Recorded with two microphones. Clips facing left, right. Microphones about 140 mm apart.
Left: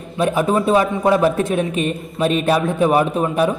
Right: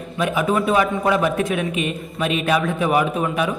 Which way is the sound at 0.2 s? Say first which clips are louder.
Left 3 dB; 35° left (ahead or behind).